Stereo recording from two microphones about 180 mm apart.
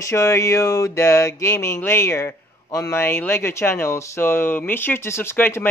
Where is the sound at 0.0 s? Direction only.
15° left (ahead or behind).